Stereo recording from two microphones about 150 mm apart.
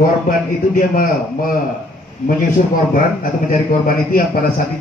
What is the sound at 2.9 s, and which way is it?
A man's voice, 65° left (ahead or behind).